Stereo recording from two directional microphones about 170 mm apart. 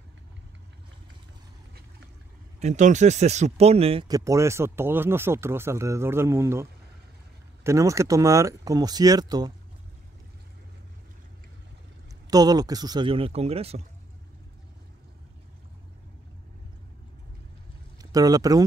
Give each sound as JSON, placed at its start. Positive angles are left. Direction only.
{"t": 2.6, "sound": "speech", "side_deg": -45}
{"t": 4.1, "sound": "speech", "side_deg": -20}
{"t": 12.3, "sound": "speech", "side_deg": -20}
{"t": 17.9, "sound": "speech", "side_deg": -20}